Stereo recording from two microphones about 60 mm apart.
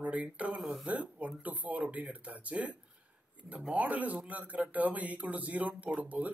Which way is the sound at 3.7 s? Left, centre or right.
Right.